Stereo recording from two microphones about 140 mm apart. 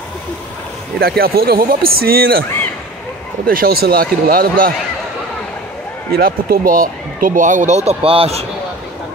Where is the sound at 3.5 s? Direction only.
90° right.